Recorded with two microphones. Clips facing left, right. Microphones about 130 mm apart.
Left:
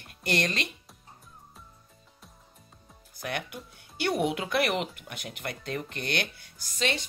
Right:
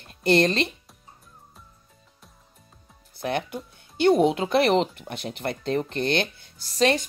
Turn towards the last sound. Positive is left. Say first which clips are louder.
# right 9 dB
turn(degrees=-40)  # may be behind; listen again after turning